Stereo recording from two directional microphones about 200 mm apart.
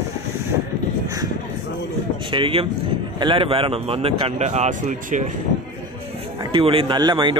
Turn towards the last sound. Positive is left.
turn(degrees=-25)  # may be behind; listen again after turning